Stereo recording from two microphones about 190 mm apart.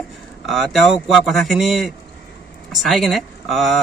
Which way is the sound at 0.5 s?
Centre (ahead or behind).